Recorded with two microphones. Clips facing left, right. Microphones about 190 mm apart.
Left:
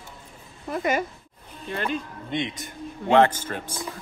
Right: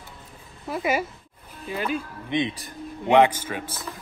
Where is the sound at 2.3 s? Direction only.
20° right (ahead or behind).